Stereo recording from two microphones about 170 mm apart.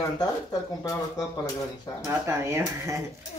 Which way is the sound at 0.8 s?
20° left (ahead or behind).